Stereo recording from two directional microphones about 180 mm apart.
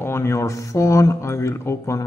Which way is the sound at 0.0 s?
15° left (ahead or behind).